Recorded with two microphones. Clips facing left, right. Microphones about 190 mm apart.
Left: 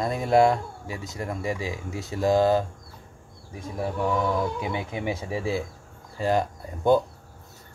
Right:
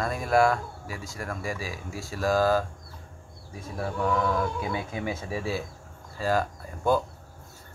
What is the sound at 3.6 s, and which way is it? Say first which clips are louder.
Speech: left 2 dB; 15° left (ahead or behind).